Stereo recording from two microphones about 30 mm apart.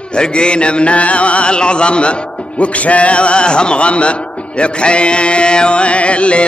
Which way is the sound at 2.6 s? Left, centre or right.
Left.